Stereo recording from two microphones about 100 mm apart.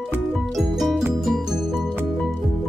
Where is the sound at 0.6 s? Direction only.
5° right (ahead or behind).